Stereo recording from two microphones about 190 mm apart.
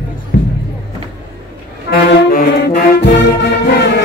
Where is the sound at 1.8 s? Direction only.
50° left (ahead or behind).